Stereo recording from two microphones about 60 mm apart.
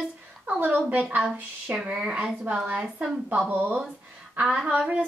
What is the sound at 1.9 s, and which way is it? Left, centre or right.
A woman's voice, centre.